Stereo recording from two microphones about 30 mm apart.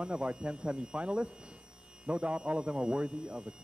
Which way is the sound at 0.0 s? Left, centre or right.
Right.